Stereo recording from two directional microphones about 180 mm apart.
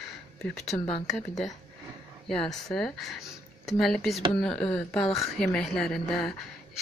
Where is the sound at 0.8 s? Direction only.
30° left (ahead or behind).